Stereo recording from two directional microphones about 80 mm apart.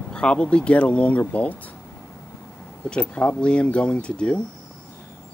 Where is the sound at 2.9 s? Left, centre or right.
Centre.